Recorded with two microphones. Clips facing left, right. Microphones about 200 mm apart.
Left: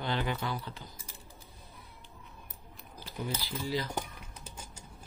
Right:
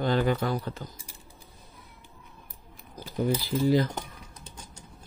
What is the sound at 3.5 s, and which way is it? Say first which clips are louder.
Speech: right 12 dB; 50° right (ahead or behind).